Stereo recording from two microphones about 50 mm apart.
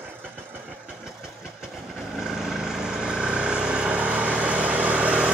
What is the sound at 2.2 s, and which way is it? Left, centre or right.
Vehicle, centre.